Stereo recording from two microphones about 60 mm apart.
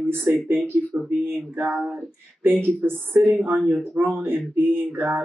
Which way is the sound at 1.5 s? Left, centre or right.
Right.